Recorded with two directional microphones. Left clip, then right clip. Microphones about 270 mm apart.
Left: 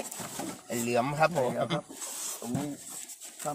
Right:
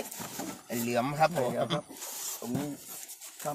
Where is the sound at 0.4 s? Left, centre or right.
Centre.